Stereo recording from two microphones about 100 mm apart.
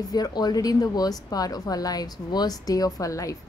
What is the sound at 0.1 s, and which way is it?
A woman's voice, 40° left (ahead or behind).